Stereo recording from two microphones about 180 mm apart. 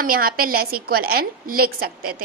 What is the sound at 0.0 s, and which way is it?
A woman's voice, 55° right (ahead or behind).